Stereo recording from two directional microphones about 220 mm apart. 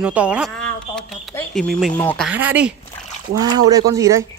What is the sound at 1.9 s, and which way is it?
Speech, 15° left (ahead or behind).